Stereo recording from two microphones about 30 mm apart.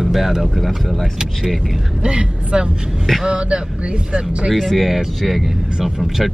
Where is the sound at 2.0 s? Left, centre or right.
Right.